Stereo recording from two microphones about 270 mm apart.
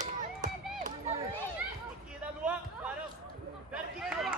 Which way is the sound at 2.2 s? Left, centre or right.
Centre.